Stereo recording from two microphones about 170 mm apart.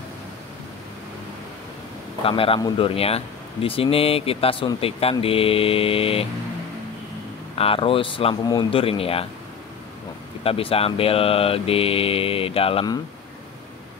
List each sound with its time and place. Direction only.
2.2 s speech: 35° left (ahead or behind)
7.5 s speech: 35° left (ahead or behind)
10.4 s speech: 35° left (ahead or behind)